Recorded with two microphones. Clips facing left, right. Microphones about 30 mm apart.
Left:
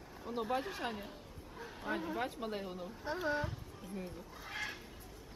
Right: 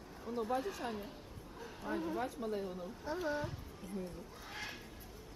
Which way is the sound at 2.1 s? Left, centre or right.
Left.